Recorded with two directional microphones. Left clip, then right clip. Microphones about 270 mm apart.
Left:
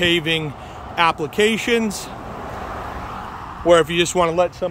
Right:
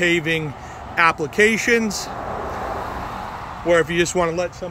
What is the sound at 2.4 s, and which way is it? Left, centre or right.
Vehicle, right.